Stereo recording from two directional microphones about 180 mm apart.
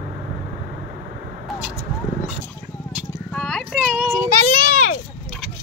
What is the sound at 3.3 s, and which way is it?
Horse, centre (ahead or behind).